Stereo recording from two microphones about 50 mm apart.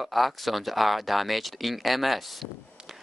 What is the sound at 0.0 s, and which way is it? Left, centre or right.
Speech, centre.